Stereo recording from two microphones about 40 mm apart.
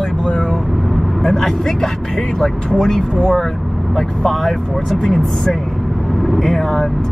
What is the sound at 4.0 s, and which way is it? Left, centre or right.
Speech, centre.